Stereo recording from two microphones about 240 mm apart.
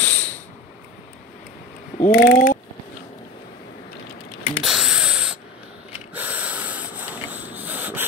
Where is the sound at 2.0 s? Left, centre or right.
Left.